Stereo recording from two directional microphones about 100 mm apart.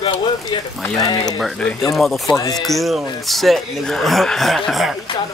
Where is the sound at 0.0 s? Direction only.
60° left (ahead or behind).